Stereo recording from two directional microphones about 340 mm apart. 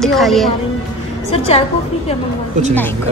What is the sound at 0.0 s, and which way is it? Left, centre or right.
Speech, centre.